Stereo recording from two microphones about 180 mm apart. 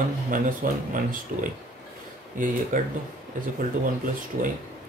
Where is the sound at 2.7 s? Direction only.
45° right (ahead or behind).